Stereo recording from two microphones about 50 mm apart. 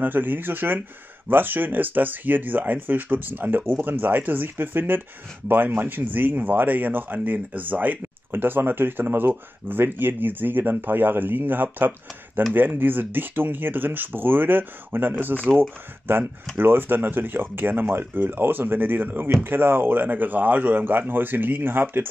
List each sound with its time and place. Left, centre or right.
0.0 s speech: right